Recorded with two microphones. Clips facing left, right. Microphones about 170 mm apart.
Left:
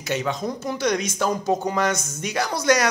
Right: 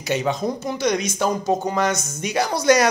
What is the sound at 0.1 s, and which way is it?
Speech, 20° right (ahead or behind).